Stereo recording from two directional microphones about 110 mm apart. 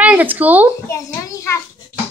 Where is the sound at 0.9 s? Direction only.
30° left (ahead or behind).